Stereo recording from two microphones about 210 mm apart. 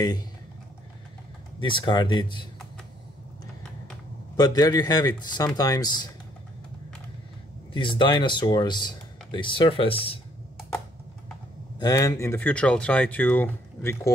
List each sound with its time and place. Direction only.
1.6 s speech: 20° left (ahead or behind)
4.4 s speech: 20° left (ahead or behind)
7.7 s speech: 25° left (ahead or behind)
11.8 s speech: 15° left (ahead or behind)